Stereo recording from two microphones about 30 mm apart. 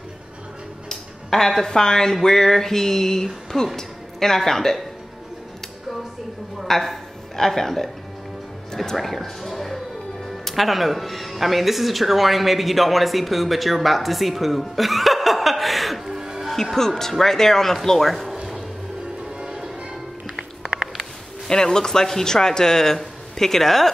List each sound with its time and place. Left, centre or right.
1.3 s speech: centre
1.7 s speech: centre
6.7 s speech: centre
17.0 s speech: centre
19.2 s change ringing: right
20.6 s a sound: centre
21.5 s speech: left